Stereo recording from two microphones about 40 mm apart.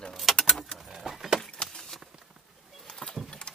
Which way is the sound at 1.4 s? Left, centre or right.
Centre.